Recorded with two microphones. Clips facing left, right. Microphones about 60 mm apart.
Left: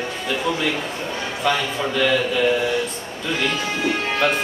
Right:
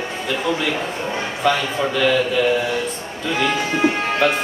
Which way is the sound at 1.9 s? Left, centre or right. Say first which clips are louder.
Right 1 dB; centre.